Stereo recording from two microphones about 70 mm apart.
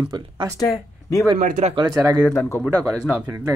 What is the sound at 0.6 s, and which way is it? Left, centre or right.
Speech, left.